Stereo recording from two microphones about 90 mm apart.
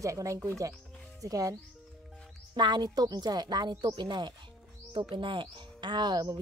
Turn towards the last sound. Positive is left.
turn(degrees=-55)  # may be behind; listen again after turning